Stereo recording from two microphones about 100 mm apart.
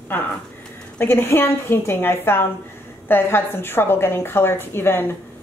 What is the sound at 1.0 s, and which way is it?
A woman's voice, 20° left (ahead or behind).